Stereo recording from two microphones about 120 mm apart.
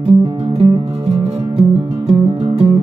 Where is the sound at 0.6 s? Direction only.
55° right (ahead or behind).